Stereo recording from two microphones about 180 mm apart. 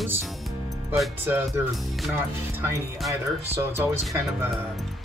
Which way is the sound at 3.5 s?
15° right (ahead or behind).